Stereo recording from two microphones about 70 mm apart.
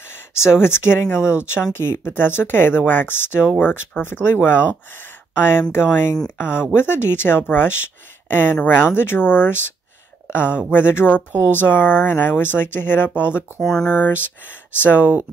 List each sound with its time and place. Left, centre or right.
0.4 s speech: left
13.7 s speech: centre
13.9 s speech: left
15.0 s speech: right